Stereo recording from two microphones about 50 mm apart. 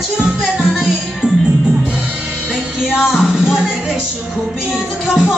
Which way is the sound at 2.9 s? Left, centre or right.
Centre.